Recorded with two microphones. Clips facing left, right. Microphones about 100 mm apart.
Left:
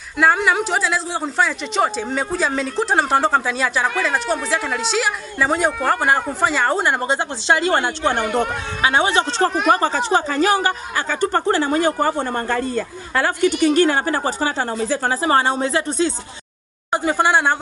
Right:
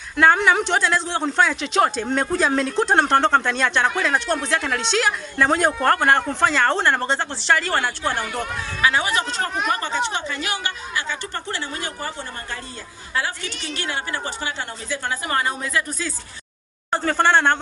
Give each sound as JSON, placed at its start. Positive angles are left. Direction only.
{"t": 0.2, "sound": "a woman's voice", "side_deg": 0}
{"t": 16.9, "sound": "speech", "side_deg": 15}